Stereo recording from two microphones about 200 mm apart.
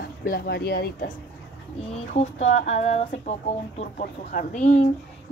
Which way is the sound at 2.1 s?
35° left (ahead or behind).